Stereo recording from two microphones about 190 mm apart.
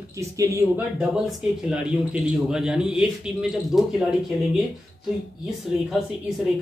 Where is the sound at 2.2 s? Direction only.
5° right (ahead or behind).